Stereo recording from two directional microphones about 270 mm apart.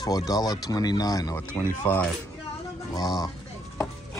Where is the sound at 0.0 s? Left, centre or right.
Centre.